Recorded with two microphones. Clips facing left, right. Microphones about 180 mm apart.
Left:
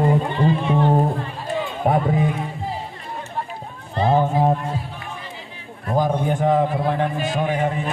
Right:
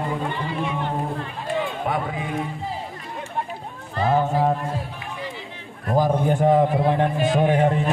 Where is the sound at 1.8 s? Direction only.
45° left (ahead or behind).